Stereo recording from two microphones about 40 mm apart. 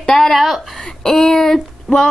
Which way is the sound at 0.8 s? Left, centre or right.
Centre.